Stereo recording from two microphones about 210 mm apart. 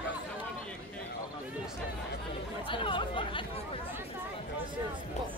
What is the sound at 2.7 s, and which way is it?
Chatter, 25° left (ahead or behind).